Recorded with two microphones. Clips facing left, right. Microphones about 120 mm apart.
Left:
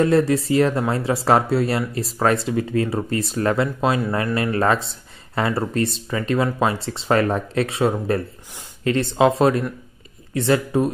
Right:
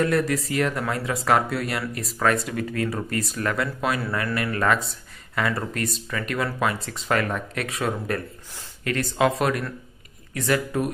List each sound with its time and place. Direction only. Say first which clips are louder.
0.0 s speech: left 5 dB; 30° left (ahead or behind)